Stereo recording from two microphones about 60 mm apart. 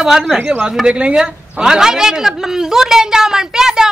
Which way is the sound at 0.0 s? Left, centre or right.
Centre.